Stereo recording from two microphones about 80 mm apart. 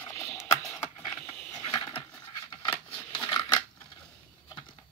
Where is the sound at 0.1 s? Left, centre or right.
Left.